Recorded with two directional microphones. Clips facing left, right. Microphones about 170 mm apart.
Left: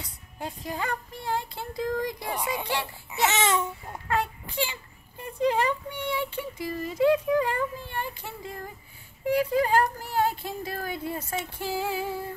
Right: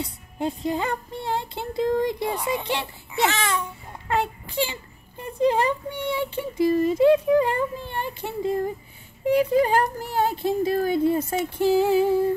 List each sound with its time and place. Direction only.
0.0 s speech: 25° right (ahead or behind)
3.3 s speech: 20° left (ahead or behind)
4.1 s a child's voice: 25° right (ahead or behind)